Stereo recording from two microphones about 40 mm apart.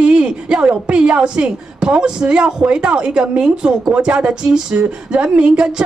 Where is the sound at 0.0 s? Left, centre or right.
Right.